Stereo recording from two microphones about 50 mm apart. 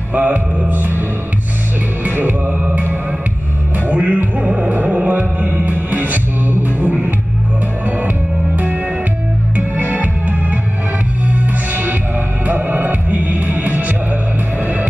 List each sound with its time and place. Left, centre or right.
0.1 s music: right
2.0 s music: right
9.6 s music: right